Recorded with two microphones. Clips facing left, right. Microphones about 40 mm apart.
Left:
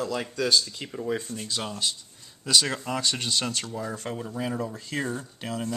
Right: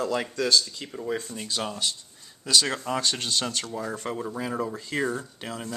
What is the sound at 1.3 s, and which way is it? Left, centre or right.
Speech, centre.